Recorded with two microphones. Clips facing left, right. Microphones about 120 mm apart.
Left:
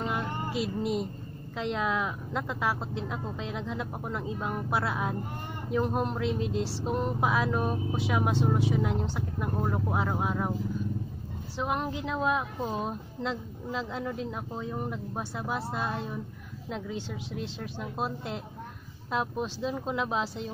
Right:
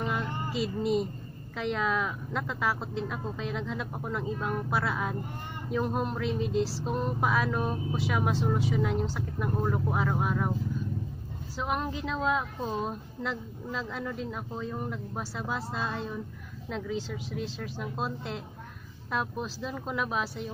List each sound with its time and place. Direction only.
0.0 s a sound: 15° left (ahead or behind)
1.6 s a woman's voice: 15° left (ahead or behind)
11.5 s a woman's voice: 15° left (ahead or behind)